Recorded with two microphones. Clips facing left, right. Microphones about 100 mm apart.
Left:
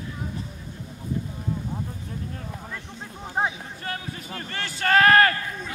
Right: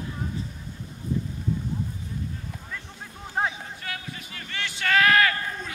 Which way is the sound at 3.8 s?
35° left (ahead or behind).